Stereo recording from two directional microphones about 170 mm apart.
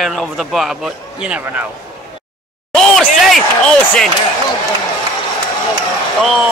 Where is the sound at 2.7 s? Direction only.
Centre (ahead or behind).